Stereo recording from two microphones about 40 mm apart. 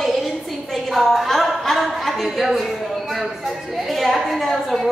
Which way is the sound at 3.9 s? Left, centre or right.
Centre.